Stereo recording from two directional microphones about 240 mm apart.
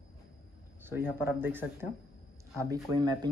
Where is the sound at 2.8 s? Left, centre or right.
Centre.